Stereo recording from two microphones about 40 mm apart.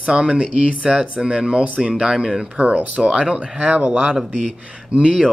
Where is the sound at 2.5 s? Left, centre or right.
Right.